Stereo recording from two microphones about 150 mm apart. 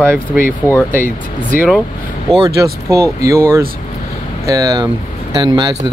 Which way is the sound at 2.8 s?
20° right (ahead or behind).